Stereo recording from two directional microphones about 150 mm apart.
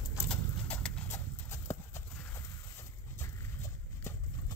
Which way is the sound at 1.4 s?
20° left (ahead or behind).